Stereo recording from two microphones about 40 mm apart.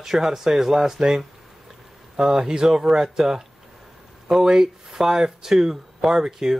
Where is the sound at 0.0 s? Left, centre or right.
Centre.